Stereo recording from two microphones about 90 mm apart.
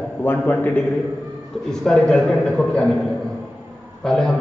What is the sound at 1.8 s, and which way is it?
A man's voice, 5° left (ahead or behind).